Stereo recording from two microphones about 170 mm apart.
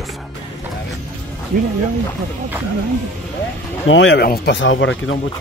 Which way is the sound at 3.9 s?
80° left.